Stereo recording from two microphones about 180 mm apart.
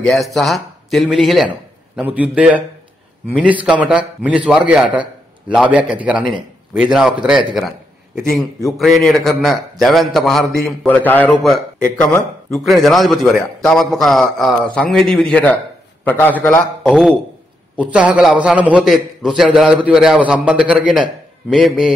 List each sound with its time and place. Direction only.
0.0 s a man's voice: centre (ahead or behind)
17.9 s a man's voice: 5° right (ahead or behind)